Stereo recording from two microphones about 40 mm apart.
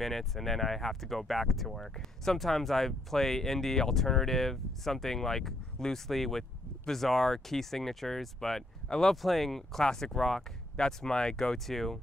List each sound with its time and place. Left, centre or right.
0.0 s speech: centre
9.1 s speech: centre